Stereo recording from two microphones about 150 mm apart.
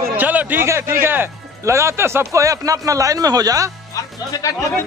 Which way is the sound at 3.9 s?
20° left (ahead or behind).